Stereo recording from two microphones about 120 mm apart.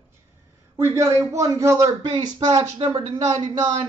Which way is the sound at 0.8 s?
25° right (ahead or behind).